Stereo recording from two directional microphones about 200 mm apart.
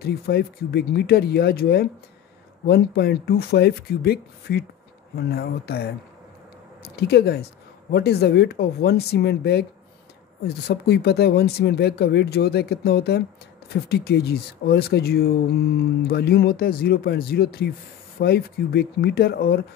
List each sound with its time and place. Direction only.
0.0 s speech: 50° left (ahead or behind)